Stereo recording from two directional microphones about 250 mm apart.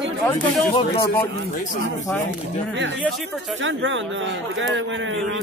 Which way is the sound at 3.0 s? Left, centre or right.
Centre.